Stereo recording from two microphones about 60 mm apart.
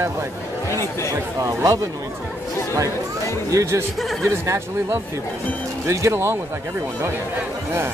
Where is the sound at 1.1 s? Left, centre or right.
Right.